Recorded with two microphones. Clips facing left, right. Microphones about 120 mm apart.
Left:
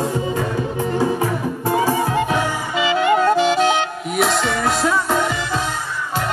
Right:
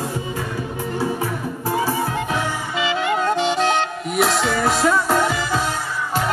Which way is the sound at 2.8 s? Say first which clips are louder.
Left 5 dB; centre (ahead or behind).